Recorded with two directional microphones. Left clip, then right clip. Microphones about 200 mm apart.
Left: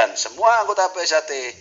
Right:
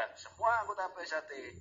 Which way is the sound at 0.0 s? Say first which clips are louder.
Left 17 dB; 60° left (ahead or behind).